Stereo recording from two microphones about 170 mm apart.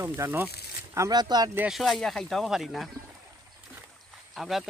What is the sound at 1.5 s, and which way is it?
Speech, 10° right (ahead or behind).